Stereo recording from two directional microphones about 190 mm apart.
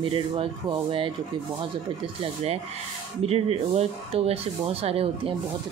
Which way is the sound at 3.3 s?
30° right (ahead or behind).